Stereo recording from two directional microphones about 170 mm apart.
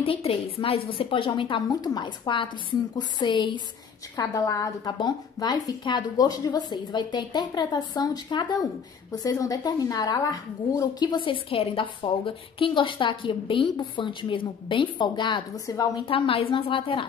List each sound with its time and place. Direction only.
0.0 s a woman's voice: 35° left (ahead or behind)
16.1 s a woman's voice: 30° left (ahead or behind)